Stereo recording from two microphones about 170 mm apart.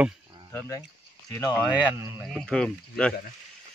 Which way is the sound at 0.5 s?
15° left (ahead or behind).